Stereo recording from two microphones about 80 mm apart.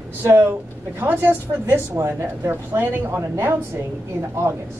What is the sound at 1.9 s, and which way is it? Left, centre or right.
Speech, right.